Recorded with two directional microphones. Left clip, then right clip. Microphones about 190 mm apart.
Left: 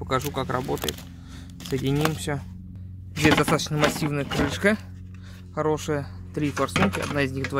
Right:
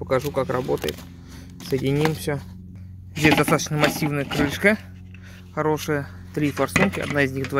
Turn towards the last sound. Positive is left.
turn(degrees=-5)  # may be behind; listen again after turning